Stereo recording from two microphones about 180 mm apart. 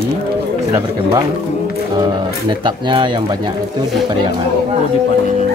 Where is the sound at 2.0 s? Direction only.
25° right (ahead or behind).